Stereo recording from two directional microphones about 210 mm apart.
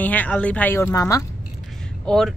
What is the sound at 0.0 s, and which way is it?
Speech, 10° left (ahead or behind).